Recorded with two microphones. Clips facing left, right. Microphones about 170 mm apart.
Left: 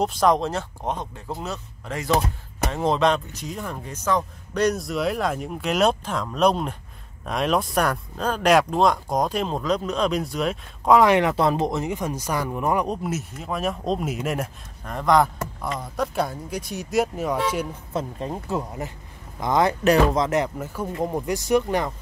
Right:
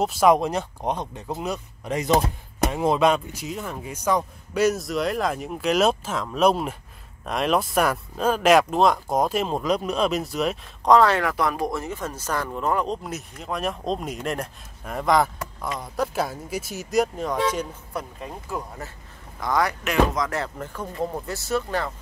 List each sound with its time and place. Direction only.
0.0 s speech: 5° right (ahead or behind)
11.0 s speech: 15° left (ahead or behind)
17.9 s speech: 25° left (ahead or behind)
19.8 s speech: 35° left (ahead or behind)
20.2 s speech: 20° left (ahead or behind)